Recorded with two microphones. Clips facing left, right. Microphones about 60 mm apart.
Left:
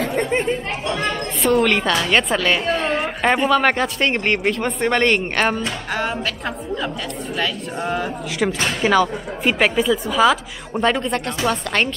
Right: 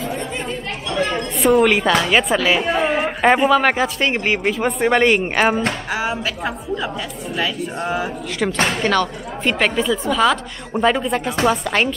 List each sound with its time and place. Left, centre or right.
0.0 s chatter: left
0.3 s speech: left
0.9 s a sound: centre
1.5 s a woman's voice: centre
8.8 s a woman's voice: centre